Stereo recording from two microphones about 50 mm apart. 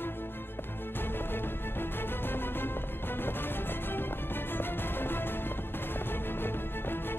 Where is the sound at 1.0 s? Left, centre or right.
Left.